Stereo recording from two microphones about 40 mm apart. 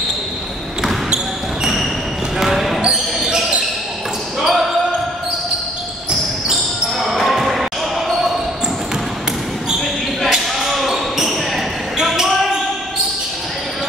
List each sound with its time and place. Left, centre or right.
1.6 s basketball bounce: centre
2.9 s basketball bounce: centre
4.4 s basketball bounce: centre
7.0 s basketball bounce: centre
10.3 s basketball bounce: centre